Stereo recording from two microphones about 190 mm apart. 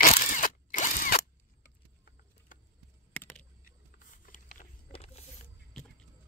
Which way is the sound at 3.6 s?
45° left (ahead or behind).